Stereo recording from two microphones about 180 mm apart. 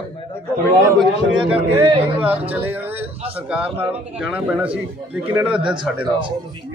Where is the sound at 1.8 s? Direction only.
30° right (ahead or behind).